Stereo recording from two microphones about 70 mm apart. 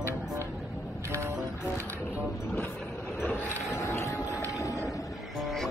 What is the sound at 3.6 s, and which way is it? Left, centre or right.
Boat, left.